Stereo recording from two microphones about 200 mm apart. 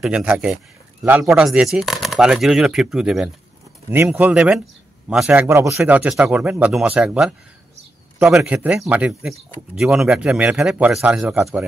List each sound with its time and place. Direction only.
0.0 s speech: 5° right (ahead or behind)